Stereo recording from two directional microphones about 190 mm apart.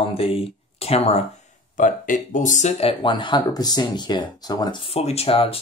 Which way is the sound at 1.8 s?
40° left (ahead or behind).